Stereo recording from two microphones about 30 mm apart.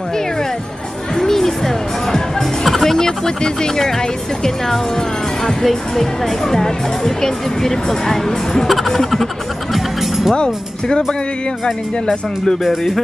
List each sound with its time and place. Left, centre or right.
1.1 s music: centre
2.6 s music: centre
3.0 s speech: left
5.5 s speech: centre
8.6 s music: centre
10.3 s speech: left